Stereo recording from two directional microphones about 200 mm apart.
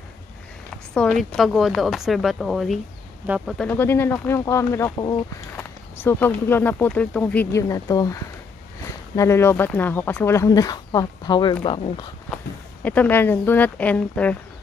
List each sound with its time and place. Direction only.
0.9 s a woman's voice: centre (ahead or behind); by 12.1 s 25° left (ahead or behind)
12.8 s speech: 5° left (ahead or behind)